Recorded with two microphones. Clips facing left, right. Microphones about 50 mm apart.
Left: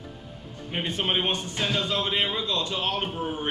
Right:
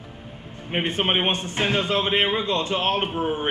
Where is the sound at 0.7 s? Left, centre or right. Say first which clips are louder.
Right 4 dB; right.